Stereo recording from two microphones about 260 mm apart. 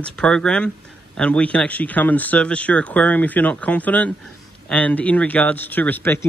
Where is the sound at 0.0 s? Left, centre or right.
Centre.